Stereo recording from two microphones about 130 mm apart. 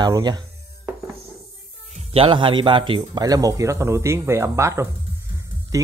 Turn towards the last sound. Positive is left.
turn(degrees=-25)  # may be behind; listen again after turning